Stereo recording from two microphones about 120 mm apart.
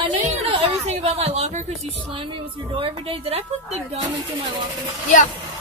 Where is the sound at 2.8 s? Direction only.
50° right (ahead or behind).